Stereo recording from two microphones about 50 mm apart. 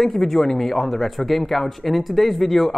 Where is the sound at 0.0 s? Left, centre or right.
Centre.